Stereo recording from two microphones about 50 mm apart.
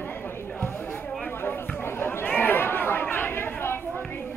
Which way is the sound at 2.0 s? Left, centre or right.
Left.